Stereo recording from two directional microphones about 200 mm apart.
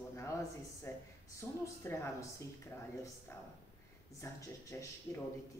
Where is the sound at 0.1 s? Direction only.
15° left (ahead or behind).